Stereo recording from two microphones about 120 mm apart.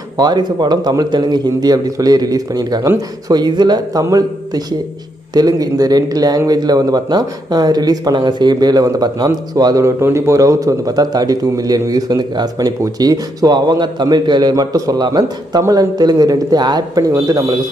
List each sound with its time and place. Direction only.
0.2 s speech: 35° right (ahead or behind)
5.3 s speech: 30° right (ahead or behind)